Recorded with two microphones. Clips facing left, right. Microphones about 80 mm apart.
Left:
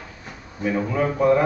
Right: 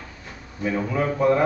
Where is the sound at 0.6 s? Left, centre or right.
Centre.